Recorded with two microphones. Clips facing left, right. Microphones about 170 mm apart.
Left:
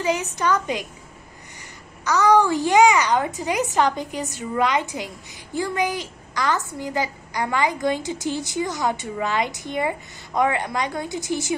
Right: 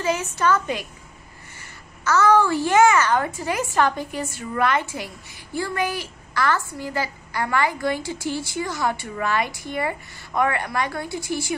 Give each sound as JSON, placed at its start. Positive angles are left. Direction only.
{"t": 0.0, "sound": "a woman's voice", "side_deg": 15}